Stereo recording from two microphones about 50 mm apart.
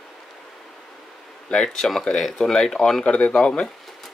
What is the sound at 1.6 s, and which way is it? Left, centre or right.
Speech, centre.